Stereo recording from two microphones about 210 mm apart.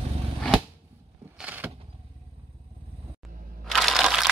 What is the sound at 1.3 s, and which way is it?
Vehicle, 5° right (ahead or behind).